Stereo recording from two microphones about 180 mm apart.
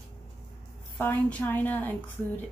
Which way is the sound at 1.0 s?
10° left (ahead or behind).